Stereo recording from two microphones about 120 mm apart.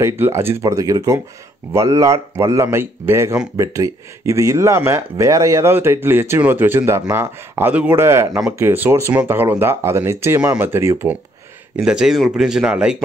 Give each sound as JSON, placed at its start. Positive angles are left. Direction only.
{"t": 0.0, "sound": "speech", "side_deg": -20}
{"t": 11.7, "sound": "speech", "side_deg": -5}